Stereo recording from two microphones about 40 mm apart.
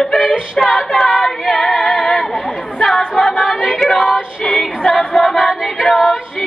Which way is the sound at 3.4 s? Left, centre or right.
Centre.